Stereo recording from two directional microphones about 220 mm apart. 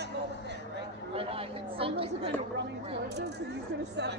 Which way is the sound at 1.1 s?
25° right (ahead or behind).